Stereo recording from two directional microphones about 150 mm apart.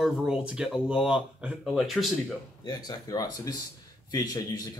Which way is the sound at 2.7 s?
25° left (ahead or behind).